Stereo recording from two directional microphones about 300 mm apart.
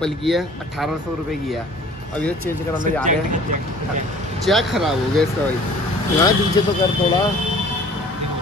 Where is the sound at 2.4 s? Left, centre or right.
Right.